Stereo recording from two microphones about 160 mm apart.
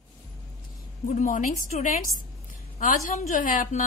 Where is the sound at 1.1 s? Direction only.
55° left (ahead or behind).